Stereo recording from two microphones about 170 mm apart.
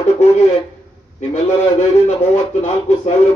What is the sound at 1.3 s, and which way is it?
Speech, 40° left (ahead or behind).